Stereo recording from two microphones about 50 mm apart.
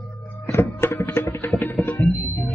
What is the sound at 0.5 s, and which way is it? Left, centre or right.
Music, left.